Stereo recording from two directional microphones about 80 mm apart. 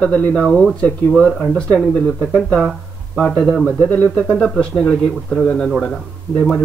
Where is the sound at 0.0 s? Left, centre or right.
Centre.